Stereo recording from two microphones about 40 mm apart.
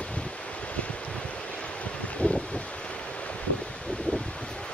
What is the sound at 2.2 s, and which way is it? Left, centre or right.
Wind, left.